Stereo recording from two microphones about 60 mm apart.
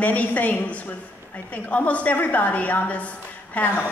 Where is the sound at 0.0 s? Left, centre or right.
Left.